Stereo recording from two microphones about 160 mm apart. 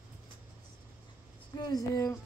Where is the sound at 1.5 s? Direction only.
25° left (ahead or behind).